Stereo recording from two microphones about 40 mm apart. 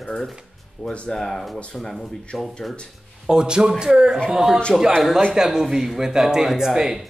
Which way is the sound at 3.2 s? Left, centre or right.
Centre.